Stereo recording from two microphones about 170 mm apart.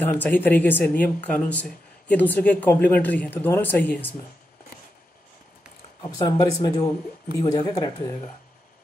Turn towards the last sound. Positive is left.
turn(degrees=20)  # may be behind; listen again after turning